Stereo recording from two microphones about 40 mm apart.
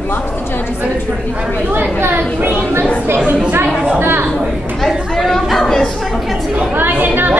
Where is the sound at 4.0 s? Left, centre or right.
Right.